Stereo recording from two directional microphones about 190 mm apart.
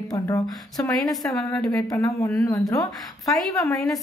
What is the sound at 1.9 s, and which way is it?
Speech, 15° left (ahead or behind).